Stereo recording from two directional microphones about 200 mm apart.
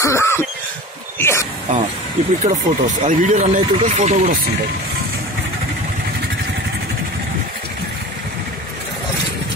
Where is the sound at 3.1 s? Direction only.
40° right (ahead or behind).